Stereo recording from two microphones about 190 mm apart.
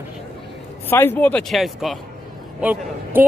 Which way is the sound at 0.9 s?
10° left (ahead or behind).